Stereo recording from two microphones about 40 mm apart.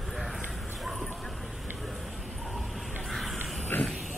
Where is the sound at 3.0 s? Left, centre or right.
Centre.